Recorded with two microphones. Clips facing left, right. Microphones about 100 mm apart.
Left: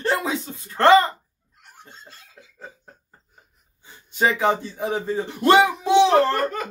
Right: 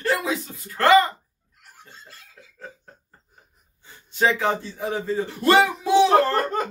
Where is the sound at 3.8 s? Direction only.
15° left (ahead or behind).